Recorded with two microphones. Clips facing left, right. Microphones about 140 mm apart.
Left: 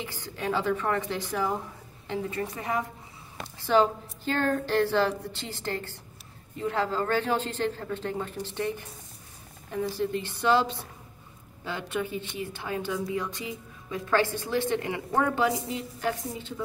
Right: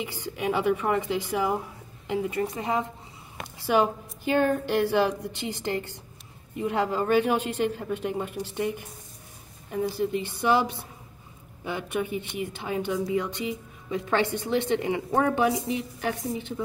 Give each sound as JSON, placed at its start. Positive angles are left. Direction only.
{"t": 0.0, "sound": "a woman's voice", "side_deg": -15}